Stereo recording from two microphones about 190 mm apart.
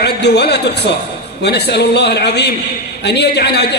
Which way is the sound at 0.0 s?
60° left (ahead or behind).